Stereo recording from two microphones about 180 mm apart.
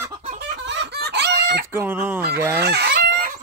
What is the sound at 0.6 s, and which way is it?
Chicken, 65° right (ahead or behind).